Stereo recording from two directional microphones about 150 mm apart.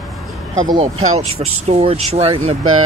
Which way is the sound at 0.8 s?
45° right (ahead or behind).